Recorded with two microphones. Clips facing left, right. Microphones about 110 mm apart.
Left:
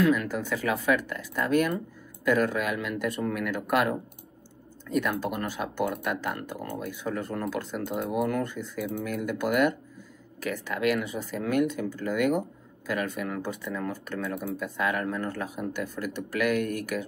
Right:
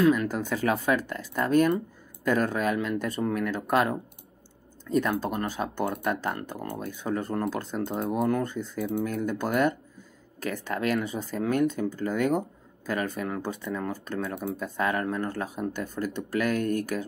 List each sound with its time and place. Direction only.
0.0 s speech: 30° right (ahead or behind)